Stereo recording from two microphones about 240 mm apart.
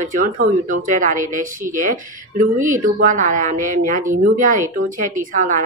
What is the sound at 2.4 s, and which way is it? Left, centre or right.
A woman's voice, right.